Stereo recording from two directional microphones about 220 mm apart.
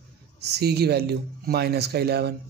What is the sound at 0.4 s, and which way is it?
Speech, 50° right (ahead or behind).